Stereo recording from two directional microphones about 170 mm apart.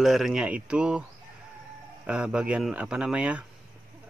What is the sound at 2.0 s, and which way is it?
Speech, 5° right (ahead or behind).